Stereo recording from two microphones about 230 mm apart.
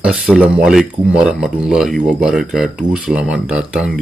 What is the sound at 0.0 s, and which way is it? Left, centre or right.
Speech, centre.